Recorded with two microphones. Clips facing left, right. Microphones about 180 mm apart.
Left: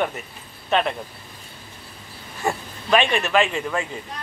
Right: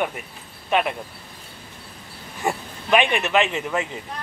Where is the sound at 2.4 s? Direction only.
15° right (ahead or behind).